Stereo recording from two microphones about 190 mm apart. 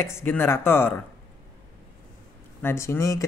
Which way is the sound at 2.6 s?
15° left (ahead or behind).